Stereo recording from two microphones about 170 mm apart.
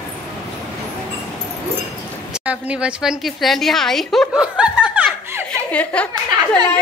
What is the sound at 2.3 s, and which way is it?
A woman's voice, 10° right (ahead or behind).